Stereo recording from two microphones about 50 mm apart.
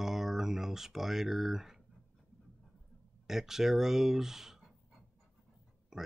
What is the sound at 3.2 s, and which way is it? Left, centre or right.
Speech, centre.